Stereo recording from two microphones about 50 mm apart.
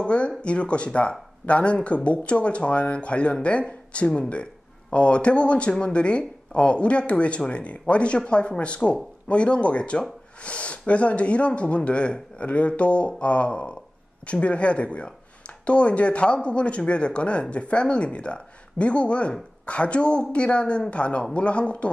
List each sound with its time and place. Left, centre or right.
0.0 s speech: left